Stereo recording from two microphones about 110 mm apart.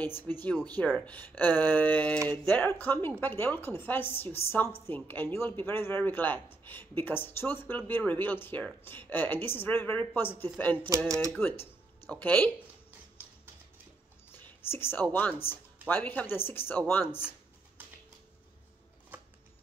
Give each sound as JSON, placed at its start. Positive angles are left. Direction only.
{"t": 0.0, "sound": "a man's voice", "side_deg": 20}
{"t": 14.3, "sound": "a man's voice", "side_deg": 20}